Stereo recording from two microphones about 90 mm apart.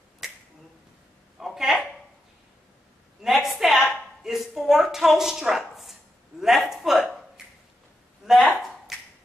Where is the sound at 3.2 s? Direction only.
Centre (ahead or behind).